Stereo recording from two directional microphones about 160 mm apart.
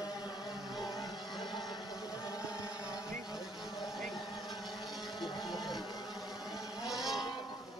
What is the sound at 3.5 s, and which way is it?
Vehicle, 25° left (ahead or behind).